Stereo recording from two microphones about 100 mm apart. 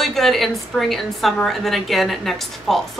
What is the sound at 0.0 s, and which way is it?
A woman's voice, centre (ahead or behind).